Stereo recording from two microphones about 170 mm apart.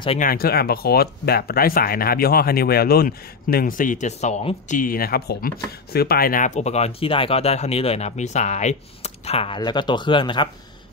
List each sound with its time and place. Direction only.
0.2 s speech: 60° left (ahead or behind); by 4.7 s 40° left (ahead or behind)
4.7 s speech: 55° left (ahead or behind); by 10.5 s 25° left (ahead or behind)